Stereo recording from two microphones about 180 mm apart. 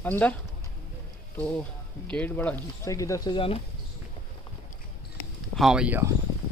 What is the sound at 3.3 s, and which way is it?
Speech, 30° left (ahead or behind).